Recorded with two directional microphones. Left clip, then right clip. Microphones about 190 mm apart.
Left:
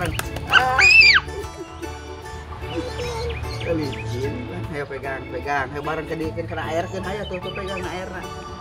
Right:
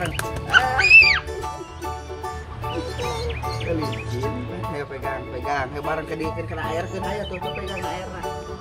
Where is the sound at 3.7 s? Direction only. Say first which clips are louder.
Left 5 dB; centre (ahead or behind).